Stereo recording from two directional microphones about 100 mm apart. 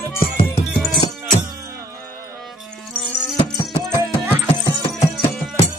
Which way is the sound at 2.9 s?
5° right (ahead or behind).